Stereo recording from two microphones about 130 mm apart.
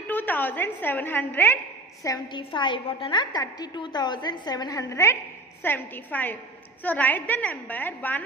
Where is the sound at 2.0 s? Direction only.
35° left (ahead or behind).